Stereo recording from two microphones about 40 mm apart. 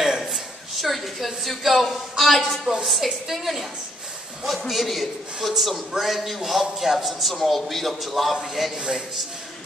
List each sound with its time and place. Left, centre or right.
0.2 s a woman's voice: centre
8.7 s a man's voice: centre